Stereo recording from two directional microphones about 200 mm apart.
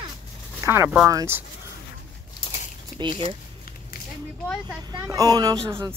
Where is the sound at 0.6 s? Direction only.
10° right (ahead or behind).